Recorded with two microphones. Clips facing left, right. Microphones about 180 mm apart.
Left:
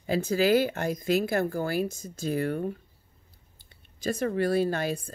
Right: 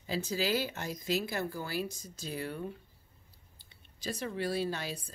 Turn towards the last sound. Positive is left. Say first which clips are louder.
# left 8 dB
turn(degrees=50)  # may be behind; listen again after turning